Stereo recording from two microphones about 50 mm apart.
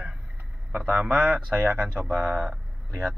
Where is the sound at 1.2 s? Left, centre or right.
Right.